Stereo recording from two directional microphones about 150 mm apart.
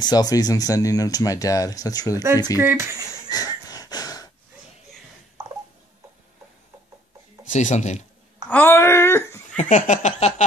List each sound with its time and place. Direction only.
0.0 s speech: 25° left (ahead or behind)
2.5 s speech: 15° right (ahead or behind)
3.3 s wheeze: 25° left (ahead or behind)
7.4 s a sound: 55° left (ahead or behind)
8.5 s speech: 15° left (ahead or behind)
9.6 s a sound: 55° left (ahead or behind)